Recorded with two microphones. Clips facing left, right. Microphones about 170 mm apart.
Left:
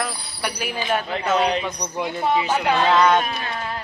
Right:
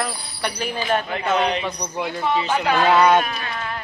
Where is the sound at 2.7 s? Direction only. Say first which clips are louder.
Right 2 dB; 10° right (ahead or behind).